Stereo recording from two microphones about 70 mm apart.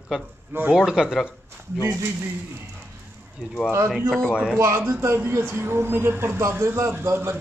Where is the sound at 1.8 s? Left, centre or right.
Right.